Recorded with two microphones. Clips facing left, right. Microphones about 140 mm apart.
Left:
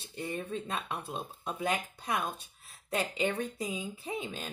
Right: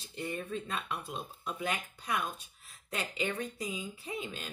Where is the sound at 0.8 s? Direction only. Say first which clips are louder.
Left 1 dB; 25° left (ahead or behind).